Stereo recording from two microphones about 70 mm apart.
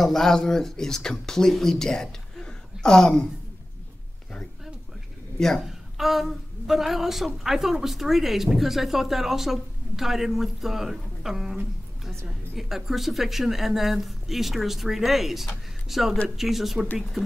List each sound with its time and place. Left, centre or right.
0.0 s speech: centre
5.6 s a woman's voice: centre
12.5 s a woman's voice: centre